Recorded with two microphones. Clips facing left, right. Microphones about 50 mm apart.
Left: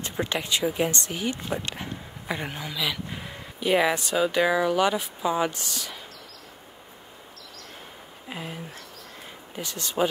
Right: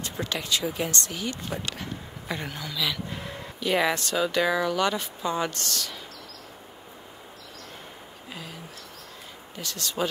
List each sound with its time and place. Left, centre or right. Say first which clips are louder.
0.0 s speech: left 3 dB; left
8.3 s a sound: left 5 dB; left
9.6 s speech: left 3 dB; left